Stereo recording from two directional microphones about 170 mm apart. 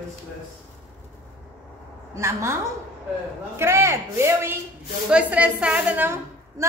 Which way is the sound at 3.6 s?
15° right (ahead or behind).